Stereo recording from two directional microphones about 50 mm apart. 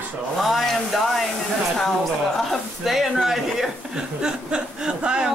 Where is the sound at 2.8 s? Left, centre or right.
Centre.